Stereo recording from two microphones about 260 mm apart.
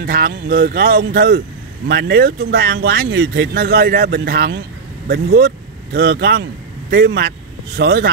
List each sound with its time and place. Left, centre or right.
0.0 s speech: right